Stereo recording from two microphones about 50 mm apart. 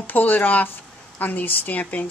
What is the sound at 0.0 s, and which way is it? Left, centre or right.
Speech, left.